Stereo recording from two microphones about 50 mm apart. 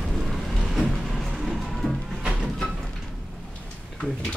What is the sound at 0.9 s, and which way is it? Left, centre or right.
Music, centre.